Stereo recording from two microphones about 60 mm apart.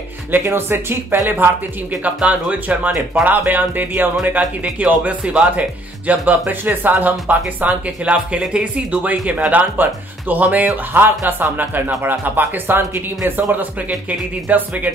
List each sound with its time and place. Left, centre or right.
0.3 s speech: right
2.2 s speech: right
6.6 s speech: right